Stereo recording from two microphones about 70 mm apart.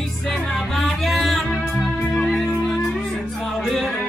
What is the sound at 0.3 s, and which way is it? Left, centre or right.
Music, centre.